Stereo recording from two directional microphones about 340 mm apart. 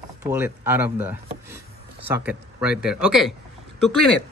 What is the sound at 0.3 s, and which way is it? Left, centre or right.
A man's voice, centre.